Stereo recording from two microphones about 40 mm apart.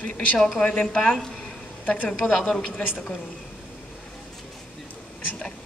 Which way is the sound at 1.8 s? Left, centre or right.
Left.